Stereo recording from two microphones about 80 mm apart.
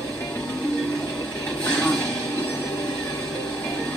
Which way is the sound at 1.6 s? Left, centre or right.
Left.